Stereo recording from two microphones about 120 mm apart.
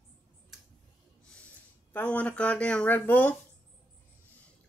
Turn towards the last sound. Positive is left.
turn(degrees=15)  # may be behind; listen again after turning